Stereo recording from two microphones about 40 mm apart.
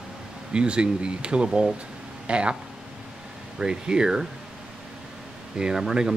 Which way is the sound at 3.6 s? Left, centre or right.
Right.